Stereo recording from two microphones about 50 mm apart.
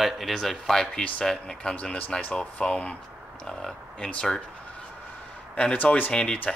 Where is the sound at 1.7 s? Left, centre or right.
Left; by 4.1 s centre.